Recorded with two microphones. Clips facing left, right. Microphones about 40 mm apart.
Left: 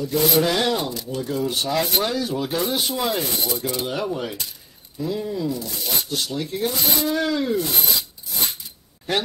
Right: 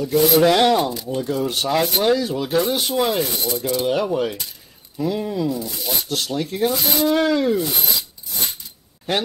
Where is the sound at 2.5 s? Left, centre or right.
Right.